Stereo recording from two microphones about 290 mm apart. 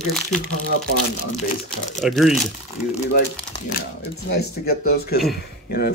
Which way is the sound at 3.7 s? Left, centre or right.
Left.